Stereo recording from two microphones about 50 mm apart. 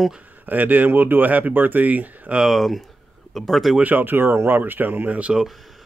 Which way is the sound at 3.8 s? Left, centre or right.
Right.